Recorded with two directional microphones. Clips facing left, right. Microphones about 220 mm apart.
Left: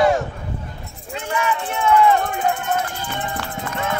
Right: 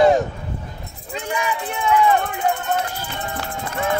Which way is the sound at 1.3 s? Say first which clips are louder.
Left 2 dB; 15° right (ahead or behind).